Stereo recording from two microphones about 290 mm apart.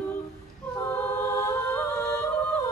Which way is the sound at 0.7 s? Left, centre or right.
Centre.